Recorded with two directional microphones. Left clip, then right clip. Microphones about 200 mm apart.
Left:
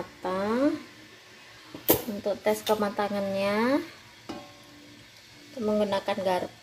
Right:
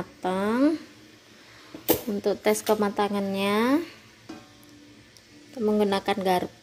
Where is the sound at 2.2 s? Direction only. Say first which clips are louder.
Right 3 dB; 45° right (ahead or behind).